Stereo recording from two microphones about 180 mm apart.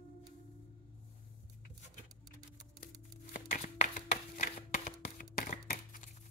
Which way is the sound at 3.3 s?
45° left (ahead or behind).